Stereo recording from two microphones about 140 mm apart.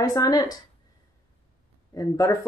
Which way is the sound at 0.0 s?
25° left (ahead or behind).